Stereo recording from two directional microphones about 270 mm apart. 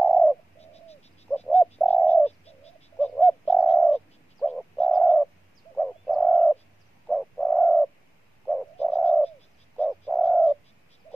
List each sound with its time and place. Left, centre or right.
0.0 s bird: centre
0.6 s a sound: left
1.2 s bird: centre